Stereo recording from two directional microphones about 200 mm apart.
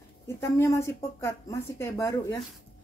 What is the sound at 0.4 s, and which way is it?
Speech, 15° left (ahead or behind).